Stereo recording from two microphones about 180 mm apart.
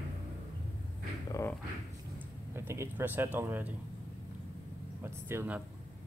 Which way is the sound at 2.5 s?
15° right (ahead or behind).